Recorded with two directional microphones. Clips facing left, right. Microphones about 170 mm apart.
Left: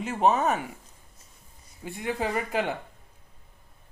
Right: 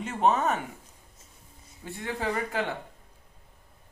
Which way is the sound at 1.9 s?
15° left (ahead or behind).